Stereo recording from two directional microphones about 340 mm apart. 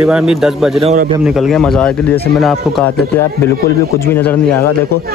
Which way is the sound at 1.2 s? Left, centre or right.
Centre.